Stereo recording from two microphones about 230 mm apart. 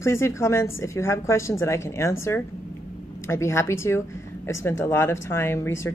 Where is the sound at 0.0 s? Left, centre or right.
Centre.